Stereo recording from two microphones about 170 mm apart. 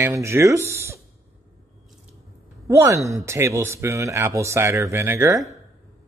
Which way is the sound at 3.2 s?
15° right (ahead or behind).